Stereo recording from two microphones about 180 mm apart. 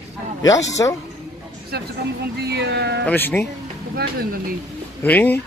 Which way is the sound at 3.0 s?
10° left (ahead or behind).